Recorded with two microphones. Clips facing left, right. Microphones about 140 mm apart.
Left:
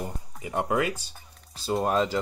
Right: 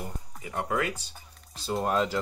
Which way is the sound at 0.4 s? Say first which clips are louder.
Left 4 dB; 20° left (ahead or behind).